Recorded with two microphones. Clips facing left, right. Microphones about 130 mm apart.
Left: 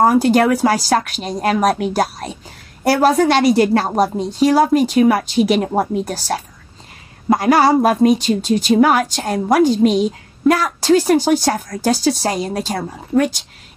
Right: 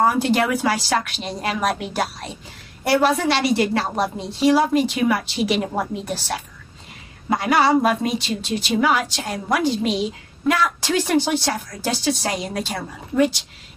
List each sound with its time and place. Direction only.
0.0 s a woman's voice: 45° left (ahead or behind)